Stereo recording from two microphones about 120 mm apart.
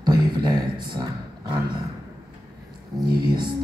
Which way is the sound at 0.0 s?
40° right (ahead or behind).